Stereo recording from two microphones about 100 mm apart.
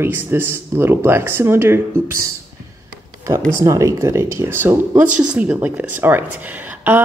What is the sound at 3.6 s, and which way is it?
Speech, 30° right (ahead or behind).